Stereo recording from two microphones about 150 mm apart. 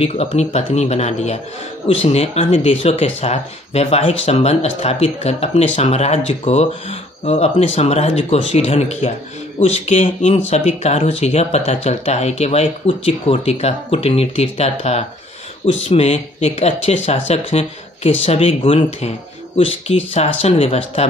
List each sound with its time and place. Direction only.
0.0 s speech: 40° left (ahead or behind)